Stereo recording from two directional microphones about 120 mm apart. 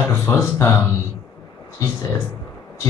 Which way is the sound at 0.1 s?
20° left (ahead or behind).